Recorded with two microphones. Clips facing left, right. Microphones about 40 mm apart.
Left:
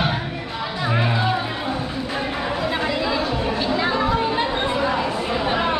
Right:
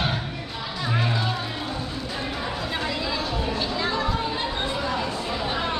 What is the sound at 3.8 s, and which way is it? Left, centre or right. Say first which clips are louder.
Chatter: left 5 dB; centre.